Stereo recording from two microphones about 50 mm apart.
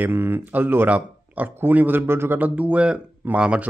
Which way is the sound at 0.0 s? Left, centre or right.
Right.